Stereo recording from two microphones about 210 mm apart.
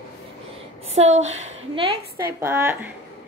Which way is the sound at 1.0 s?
30° right (ahead or behind).